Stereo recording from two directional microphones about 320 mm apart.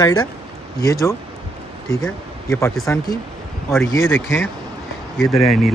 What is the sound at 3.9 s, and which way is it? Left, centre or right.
Speech, left.